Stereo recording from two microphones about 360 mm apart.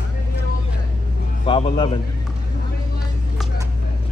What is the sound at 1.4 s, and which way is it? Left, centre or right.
Speech, centre.